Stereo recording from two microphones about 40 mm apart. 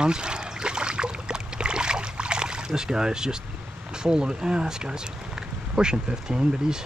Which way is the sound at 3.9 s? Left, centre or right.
Centre.